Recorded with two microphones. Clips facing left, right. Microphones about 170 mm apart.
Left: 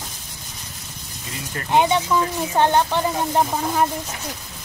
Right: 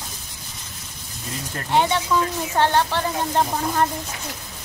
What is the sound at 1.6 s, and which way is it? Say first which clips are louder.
Speech: left 2 dB; 15° left (ahead or behind).